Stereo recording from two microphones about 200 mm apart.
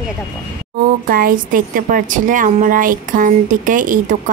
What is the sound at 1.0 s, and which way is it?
A woman's voice, 45° right (ahead or behind).